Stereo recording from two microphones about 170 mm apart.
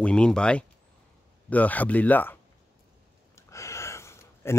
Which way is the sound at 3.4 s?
15° left (ahead or behind).